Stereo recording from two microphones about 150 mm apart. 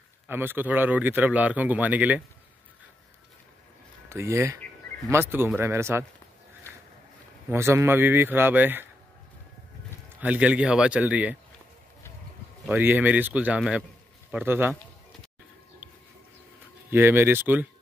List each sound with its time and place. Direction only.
0.3 s a man's voice: 15° right (ahead or behind)
4.1 s a man's voice: 15° right (ahead or behind)
7.4 s a man's voice: 15° right (ahead or behind)
10.2 s a man's voice: 10° right (ahead or behind)
12.7 s a man's voice: 10° right (ahead or behind)
16.9 s a man's voice: 15° right (ahead or behind)